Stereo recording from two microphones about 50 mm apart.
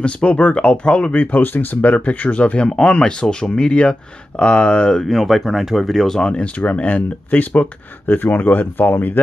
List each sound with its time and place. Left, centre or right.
0.0 s speech: left
5.0 s speech: centre
6.2 s speech: left